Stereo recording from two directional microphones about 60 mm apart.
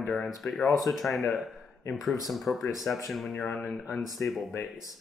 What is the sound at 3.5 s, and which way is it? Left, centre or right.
Speech, left.